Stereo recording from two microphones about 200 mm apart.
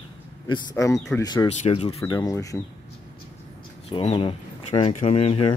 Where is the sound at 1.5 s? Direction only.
30° left (ahead or behind); by 2.6 s 15° left (ahead or behind).